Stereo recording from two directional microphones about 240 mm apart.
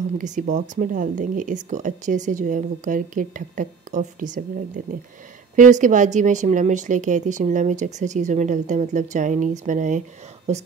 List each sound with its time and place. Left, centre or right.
0.2 s a woman's voice: right